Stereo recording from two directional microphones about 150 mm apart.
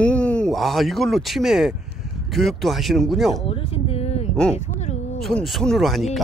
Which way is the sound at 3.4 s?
40° left (ahead or behind).